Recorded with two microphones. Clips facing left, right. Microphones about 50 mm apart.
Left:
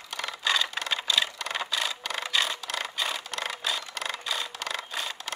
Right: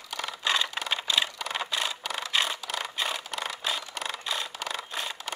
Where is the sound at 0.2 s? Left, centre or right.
Centre.